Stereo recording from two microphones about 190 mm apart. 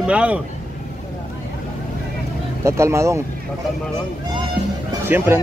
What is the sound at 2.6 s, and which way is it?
Speech, 15° right (ahead or behind).